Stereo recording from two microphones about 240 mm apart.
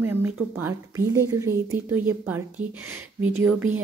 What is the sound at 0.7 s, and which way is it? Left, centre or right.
A woman's voice, centre.